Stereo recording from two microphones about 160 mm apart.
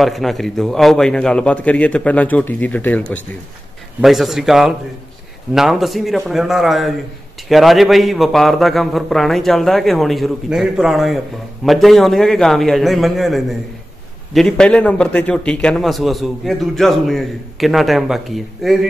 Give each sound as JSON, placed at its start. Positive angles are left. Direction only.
{"t": 0.0, "sound": "a man's voice", "side_deg": 0}
{"t": 4.0, "sound": "a man's voice", "side_deg": 0}